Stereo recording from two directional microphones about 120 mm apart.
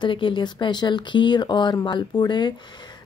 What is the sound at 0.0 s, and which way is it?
Speech, 45° left (ahead or behind).